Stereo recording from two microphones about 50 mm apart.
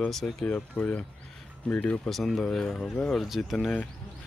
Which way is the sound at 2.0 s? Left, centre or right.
Centre.